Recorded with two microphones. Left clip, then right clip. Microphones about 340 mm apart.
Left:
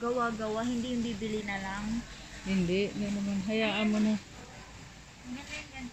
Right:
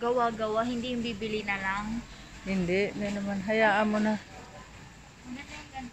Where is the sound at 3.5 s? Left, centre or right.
Right.